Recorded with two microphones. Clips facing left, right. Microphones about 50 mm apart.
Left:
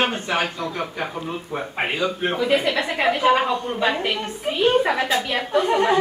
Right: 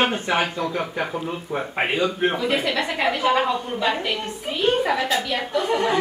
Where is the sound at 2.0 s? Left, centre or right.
Centre.